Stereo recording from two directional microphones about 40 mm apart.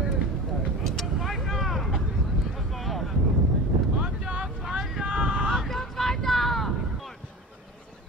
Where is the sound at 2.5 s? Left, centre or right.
Centre.